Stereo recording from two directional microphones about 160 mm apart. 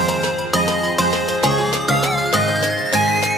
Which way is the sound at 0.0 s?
Centre (ahead or behind).